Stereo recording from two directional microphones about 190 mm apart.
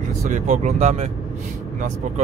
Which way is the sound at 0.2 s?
40° right (ahead or behind).